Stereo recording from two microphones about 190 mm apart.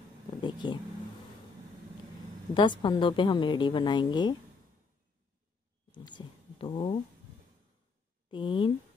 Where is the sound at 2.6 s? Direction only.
25° left (ahead or behind).